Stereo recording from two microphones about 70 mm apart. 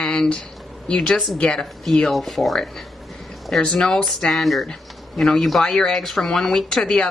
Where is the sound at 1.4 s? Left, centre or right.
Centre.